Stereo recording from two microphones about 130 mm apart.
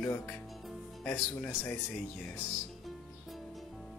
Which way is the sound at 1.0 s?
10° left (ahead or behind).